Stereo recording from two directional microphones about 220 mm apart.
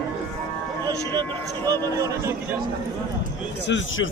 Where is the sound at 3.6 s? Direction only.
60° left (ahead or behind).